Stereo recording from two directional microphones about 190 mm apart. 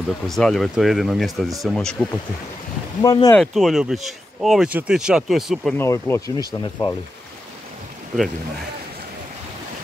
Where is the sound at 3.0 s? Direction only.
20° left (ahead or behind).